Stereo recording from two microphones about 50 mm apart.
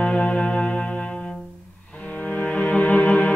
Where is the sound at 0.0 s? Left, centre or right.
Left.